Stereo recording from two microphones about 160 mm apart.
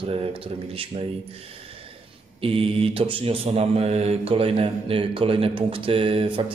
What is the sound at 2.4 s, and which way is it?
Mantra, 35° right (ahead or behind).